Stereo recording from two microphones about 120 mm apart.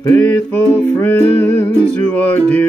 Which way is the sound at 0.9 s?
15° left (ahead or behind).